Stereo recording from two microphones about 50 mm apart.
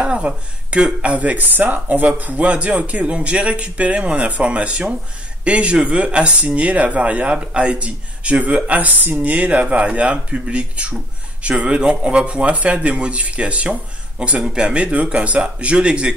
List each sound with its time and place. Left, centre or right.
0.0 s a man's voice: right